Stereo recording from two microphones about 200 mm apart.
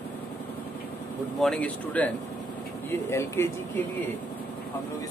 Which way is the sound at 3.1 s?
15° left (ahead or behind).